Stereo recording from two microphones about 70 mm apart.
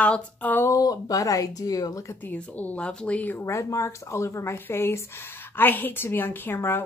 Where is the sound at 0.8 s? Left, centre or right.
Left.